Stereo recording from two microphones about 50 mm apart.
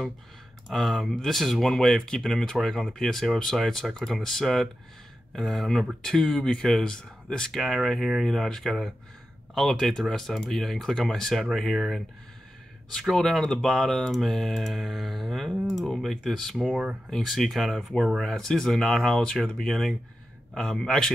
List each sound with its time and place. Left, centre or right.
0.7 s speech: centre
6.4 s speech: centre
7.5 s speech: centre
13.0 s speech: centre
16.6 s speech: centre
17.1 s speech: centre